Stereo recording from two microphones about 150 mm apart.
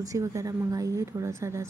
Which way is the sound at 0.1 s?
20° right (ahead or behind).